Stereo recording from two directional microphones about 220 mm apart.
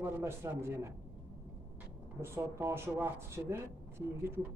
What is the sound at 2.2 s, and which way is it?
A man's voice, 10° right (ahead or behind).